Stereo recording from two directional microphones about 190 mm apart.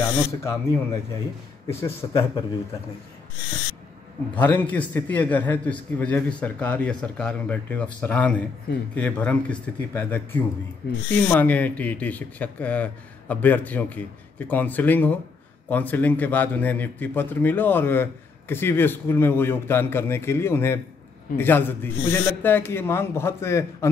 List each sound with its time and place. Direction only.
0.3 s a man's voice: 15° left (ahead or behind)
4.4 s a man's voice: 10° left (ahead or behind)